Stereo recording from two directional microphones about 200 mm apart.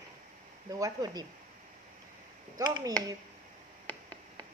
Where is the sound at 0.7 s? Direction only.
20° right (ahead or behind).